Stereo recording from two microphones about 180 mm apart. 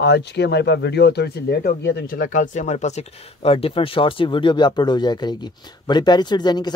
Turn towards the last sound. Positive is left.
turn(degrees=25)  # may be behind; listen again after turning